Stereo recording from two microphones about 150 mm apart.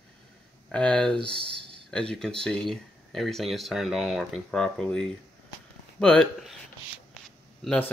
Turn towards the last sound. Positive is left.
turn(degrees=5)  # may be behind; listen again after turning